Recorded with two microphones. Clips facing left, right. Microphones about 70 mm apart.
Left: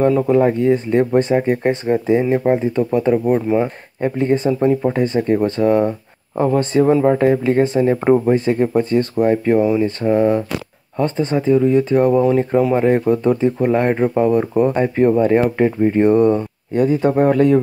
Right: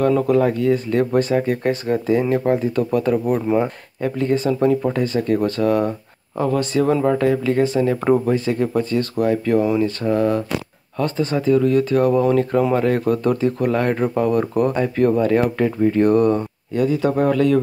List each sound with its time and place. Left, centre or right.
0.3 s speech: left
4.5 s speech: centre
16.7 s speech: left